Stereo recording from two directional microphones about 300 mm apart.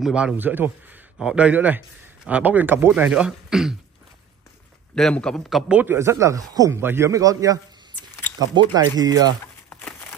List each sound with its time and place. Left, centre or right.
0.0 s speech: centre
4.9 s a man's voice: centre
9.7 s a sound: centre